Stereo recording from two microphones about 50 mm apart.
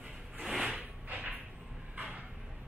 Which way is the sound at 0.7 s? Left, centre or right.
Right.